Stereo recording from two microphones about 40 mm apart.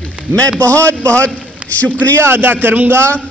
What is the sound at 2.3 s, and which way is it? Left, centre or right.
Speech, right.